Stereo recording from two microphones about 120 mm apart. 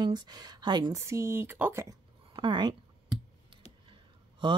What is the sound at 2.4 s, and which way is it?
Speech, 40° right (ahead or behind).